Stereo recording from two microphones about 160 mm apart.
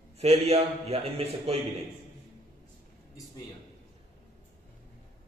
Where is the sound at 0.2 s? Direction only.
40° right (ahead or behind).